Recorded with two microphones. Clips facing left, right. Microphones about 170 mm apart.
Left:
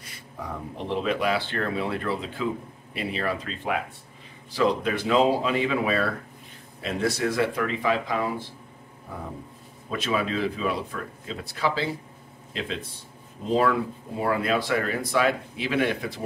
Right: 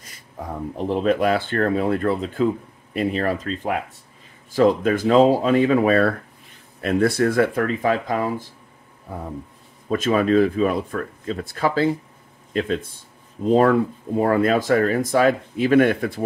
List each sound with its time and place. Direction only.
0.7 s speech: 45° right (ahead or behind)
9.8 s speech: 45° right (ahead or behind)